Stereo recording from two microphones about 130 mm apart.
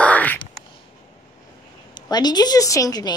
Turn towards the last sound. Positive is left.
turn(degrees=30)  # may be behind; listen again after turning